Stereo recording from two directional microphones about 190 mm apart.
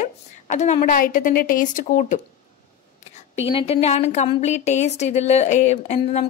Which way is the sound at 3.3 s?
30° left (ahead or behind).